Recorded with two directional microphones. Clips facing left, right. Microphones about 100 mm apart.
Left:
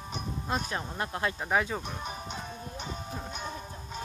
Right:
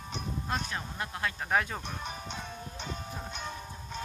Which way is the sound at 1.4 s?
5° left (ahead or behind).